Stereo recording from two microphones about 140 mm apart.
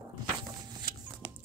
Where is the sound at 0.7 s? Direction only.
30° right (ahead or behind).